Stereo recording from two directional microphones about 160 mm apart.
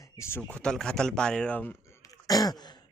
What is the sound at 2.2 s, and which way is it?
Throat clearing, 25° left (ahead or behind).